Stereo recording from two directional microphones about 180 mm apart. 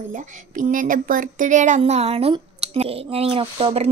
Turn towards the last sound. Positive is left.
turn(degrees=-30)  # may be behind; listen again after turning